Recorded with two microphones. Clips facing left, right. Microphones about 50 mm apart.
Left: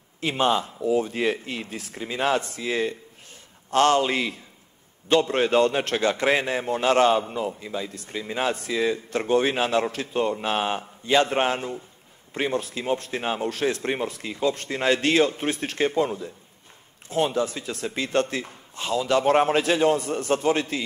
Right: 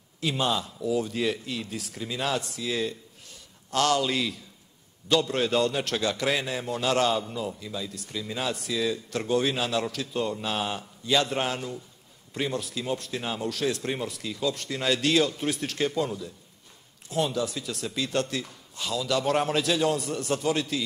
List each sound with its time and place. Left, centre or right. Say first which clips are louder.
0.2 s a man's voice: left 5 dB; left